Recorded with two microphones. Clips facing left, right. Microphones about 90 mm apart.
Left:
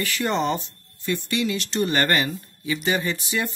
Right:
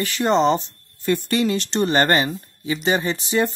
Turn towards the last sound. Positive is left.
turn(degrees=-35)  # may be behind; listen again after turning